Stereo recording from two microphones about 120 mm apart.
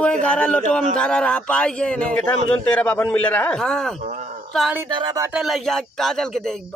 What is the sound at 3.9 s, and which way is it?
Speech, 80° right.